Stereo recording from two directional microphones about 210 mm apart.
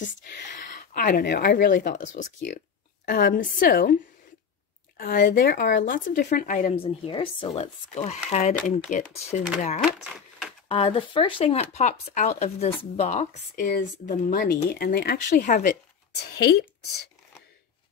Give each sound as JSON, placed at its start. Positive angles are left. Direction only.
{"t": 0.7, "sound": "speech", "side_deg": 40}
{"t": 4.9, "sound": "speech", "side_deg": 40}
{"t": 6.8, "sound": "speech", "side_deg": 25}
{"t": 9.8, "sound": "speech", "side_deg": 0}
{"t": 10.7, "sound": "speech", "side_deg": 25}
{"t": 16.2, "sound": "speech", "side_deg": 50}